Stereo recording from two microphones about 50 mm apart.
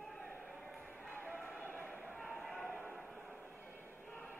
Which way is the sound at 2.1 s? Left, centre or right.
Centre.